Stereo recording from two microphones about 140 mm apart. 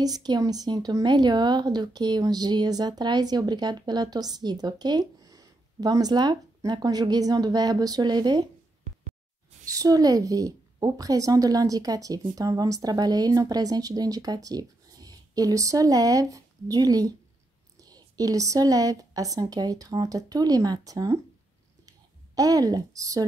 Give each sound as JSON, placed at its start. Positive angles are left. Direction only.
{"t": 0.0, "sound": "speech", "side_deg": -30}
{"t": 9.7, "sound": "speech", "side_deg": -25}
{"t": 21.8, "sound": "a sound", "side_deg": -25}